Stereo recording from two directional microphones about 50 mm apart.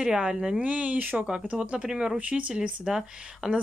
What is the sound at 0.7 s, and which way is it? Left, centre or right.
Speech, right.